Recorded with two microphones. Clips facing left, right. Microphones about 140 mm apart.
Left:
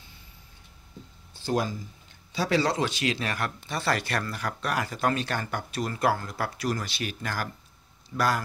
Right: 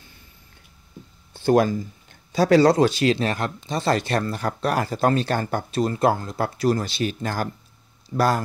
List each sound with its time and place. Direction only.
1.3 s speech: 55° right (ahead or behind)
2.3 s speech: 45° right (ahead or behind)